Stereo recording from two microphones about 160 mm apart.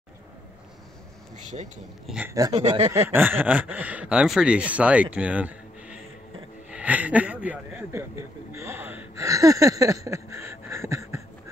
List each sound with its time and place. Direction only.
1.4 s speech: 50° right (ahead or behind)
2.0 s speech: 10° right (ahead or behind)
2.3 s speech: 20° right (ahead or behind)
3.1 s speech: 10° right (ahead or behind)